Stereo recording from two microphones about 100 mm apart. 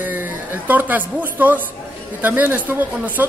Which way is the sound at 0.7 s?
15° right (ahead or behind).